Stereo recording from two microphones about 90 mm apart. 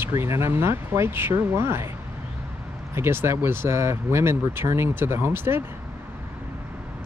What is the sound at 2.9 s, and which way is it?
Speech, 25° right (ahead or behind).